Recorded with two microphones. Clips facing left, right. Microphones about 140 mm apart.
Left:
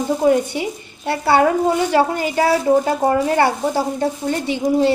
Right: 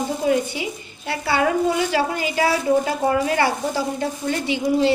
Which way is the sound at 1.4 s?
40° left (ahead or behind).